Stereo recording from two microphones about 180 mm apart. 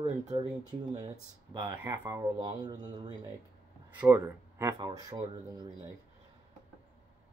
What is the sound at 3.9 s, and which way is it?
Speech, 10° right (ahead or behind).